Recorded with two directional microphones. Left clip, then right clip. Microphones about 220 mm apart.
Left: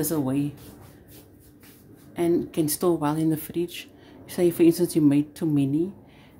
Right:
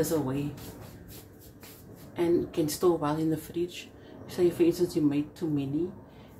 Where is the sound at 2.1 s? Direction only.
35° left (ahead or behind).